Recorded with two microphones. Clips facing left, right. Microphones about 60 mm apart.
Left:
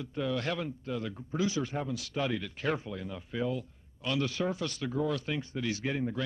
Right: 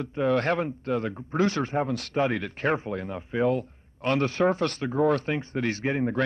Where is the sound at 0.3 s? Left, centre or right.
Right.